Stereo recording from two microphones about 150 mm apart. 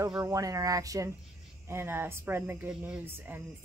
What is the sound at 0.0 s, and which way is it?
Speech, 20° right (ahead or behind).